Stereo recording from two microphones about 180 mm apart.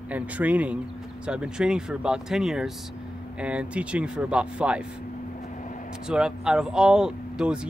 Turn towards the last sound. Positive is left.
turn(degrees=-5)  # may be behind; listen again after turning